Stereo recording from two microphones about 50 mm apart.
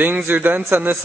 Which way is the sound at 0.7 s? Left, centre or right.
Right.